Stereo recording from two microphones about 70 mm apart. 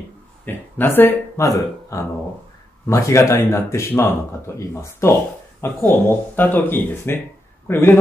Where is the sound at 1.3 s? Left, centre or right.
Left.